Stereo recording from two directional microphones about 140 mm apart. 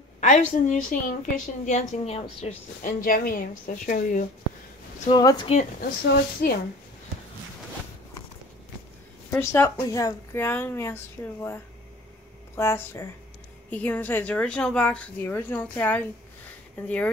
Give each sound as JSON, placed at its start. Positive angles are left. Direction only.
{"t": 0.2, "sound": "a woman's voice", "side_deg": 60}
{"t": 2.8, "sound": "a woman's voice", "side_deg": 75}
{"t": 5.1, "sound": "speech", "side_deg": 30}
{"t": 5.5, "sound": "a woman's voice", "side_deg": 70}
{"t": 9.3, "sound": "a woman's voice", "side_deg": 15}
{"t": 12.5, "sound": "a woman's voice", "side_deg": 20}